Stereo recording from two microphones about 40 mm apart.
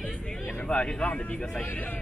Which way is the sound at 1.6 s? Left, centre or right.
Left.